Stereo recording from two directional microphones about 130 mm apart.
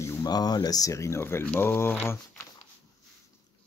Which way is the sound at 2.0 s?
20° left (ahead or behind).